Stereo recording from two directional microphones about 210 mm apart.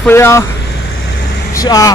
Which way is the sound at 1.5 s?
15° left (ahead or behind).